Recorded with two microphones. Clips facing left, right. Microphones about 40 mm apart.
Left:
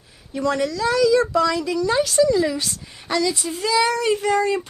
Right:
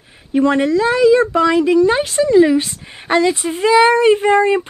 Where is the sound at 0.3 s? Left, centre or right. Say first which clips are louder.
Right 8 dB; right.